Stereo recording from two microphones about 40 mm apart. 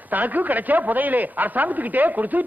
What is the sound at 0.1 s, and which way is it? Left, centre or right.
Speech, right.